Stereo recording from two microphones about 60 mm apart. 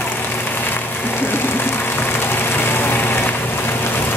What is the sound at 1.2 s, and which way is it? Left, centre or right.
Vehicle, left.